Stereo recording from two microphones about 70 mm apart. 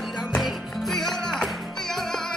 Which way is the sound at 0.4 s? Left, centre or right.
Centre.